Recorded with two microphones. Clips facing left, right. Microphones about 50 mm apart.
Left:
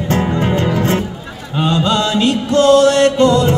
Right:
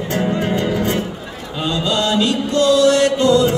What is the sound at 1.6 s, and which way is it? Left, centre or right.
Mantra, left.